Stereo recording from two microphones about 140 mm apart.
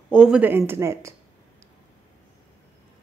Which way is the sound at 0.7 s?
20° right (ahead or behind).